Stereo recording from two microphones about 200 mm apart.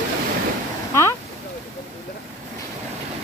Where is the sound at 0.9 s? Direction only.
15° left (ahead or behind).